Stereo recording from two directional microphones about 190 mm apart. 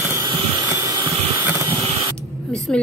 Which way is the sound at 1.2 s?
30° right (ahead or behind).